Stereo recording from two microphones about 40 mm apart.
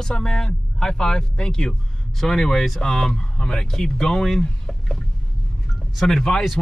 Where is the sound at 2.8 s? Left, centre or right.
Centre.